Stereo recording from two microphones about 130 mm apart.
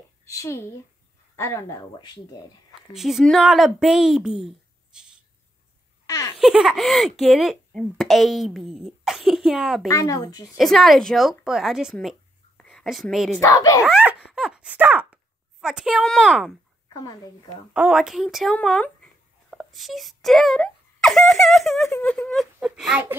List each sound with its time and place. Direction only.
0.2 s speech: 25° left (ahead or behind)
2.9 s speech: 5° right (ahead or behind)
6.0 s a sound: 25° left (ahead or behind)
6.3 s speech: 5° right (ahead or behind)
9.8 s speech: 25° left (ahead or behind)
10.4 s a woman's voice: centre (ahead or behind)
13.4 s speech: 25° left (ahead or behind)
13.8 s baby laughter: 5° right (ahead or behind)
14.3 s a sound: 5° right (ahead or behind)
15.6 s speech: 5° right (ahead or behind)
16.9 s speech: 30° left (ahead or behind)
17.7 s speech: 5° right (ahead or behind)